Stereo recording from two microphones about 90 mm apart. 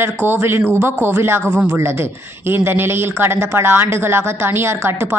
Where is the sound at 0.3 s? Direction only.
25° right (ahead or behind).